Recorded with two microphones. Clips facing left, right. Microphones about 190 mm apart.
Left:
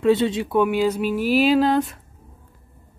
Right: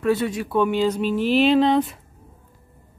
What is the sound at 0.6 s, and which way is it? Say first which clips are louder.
Speech: even; 10° left (ahead or behind).